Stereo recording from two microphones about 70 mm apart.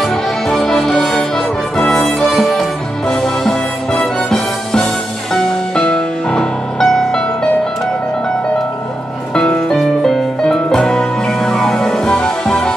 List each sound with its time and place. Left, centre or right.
0.0 s music: centre
9.3 s music: centre